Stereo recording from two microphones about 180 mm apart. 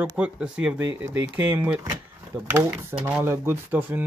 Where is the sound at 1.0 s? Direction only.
90° right.